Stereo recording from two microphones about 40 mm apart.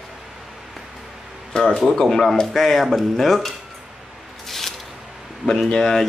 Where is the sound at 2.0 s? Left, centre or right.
Centre.